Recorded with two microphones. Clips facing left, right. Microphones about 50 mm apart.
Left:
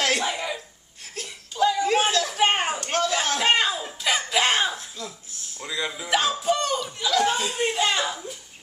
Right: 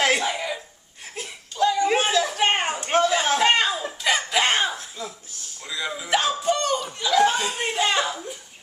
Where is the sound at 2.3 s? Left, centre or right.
Centre.